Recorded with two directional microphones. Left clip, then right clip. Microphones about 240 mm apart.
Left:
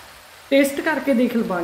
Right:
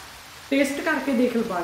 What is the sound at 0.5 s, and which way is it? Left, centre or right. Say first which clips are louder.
Speech: left 5 dB; left.